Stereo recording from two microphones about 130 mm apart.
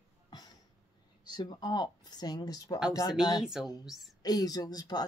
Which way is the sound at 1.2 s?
35° left (ahead or behind).